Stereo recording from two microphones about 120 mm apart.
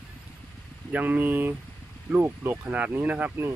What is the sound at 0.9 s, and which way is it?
Speech, 15° right (ahead or behind).